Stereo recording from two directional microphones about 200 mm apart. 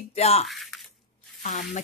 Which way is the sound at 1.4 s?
40° left (ahead or behind).